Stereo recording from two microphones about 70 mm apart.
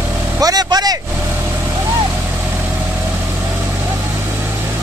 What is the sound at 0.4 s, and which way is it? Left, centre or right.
Speech, right.